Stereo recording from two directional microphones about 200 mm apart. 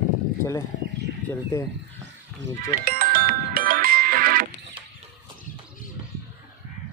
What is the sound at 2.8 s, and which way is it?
Music, 45° right (ahead or behind).